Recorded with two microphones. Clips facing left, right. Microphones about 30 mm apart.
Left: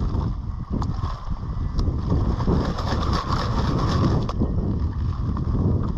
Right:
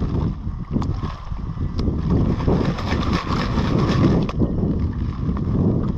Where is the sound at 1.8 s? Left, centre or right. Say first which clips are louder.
Right 5 dB; right.